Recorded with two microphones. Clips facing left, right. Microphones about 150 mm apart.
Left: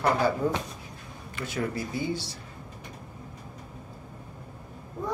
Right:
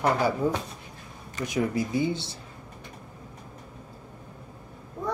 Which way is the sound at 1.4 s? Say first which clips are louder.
Right 4 dB; 15° right (ahead or behind).